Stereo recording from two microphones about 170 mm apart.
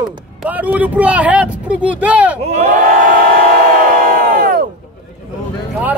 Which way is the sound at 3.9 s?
55° right (ahead or behind).